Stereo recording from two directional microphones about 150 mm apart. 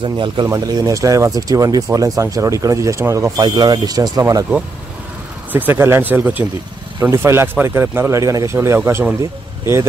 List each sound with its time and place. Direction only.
0.0 s speech: 35° right (ahead or behind)
5.5 s speech: 15° right (ahead or behind)